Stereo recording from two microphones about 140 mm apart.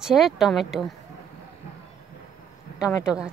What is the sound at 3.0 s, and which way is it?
Speech, 5° right (ahead or behind).